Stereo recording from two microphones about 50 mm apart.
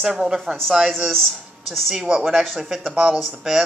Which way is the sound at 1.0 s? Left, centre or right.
Centre.